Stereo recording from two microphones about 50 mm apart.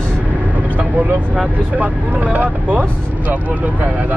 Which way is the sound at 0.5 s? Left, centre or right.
Right.